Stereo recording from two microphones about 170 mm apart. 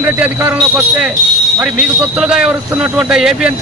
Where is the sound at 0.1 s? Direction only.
10° right (ahead or behind).